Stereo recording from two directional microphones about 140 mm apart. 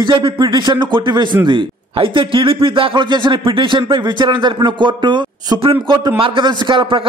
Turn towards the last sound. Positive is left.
turn(degrees=-35)  # may be behind; listen again after turning